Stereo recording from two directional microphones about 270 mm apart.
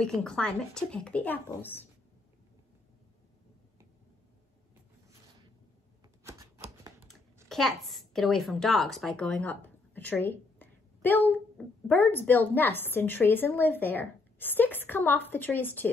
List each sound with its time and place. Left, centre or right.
0.0 s a woman's voice: centre
6.6 s typing: right
7.4 s a woman's voice: centre